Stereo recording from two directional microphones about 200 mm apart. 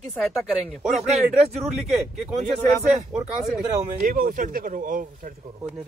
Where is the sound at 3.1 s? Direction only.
Centre (ahead or behind).